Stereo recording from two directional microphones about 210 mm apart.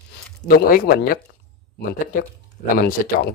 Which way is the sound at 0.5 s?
45° left (ahead or behind).